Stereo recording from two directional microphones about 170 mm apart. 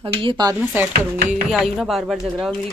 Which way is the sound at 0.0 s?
30° right (ahead or behind).